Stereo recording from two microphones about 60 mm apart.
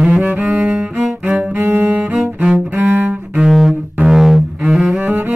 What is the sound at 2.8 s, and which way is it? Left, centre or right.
Cello, right.